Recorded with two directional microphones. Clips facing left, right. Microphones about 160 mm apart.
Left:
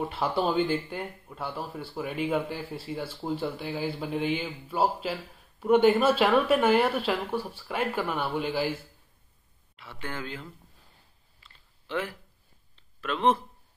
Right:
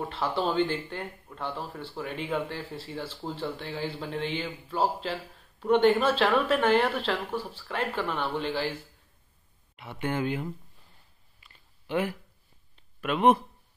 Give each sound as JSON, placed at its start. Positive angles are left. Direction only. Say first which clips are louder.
{"t": 0.1, "sound": "speech", "louder": "even", "side_deg": 10}
{"t": 9.8, "sound": "speech", "louder": "right 7 dB", "side_deg": -20}
{"t": 11.4, "sound": "a sound", "louder": "right 3 dB", "side_deg": -15}